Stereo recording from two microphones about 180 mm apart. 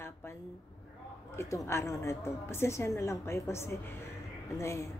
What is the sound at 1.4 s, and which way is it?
A woman's voice, 15° left (ahead or behind).